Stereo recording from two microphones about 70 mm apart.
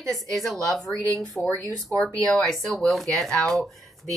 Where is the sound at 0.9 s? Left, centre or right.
Right.